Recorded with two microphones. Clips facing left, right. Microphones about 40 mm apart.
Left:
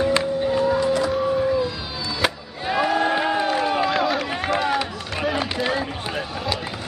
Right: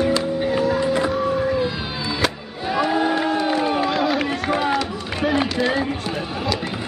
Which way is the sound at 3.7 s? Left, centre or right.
Centre.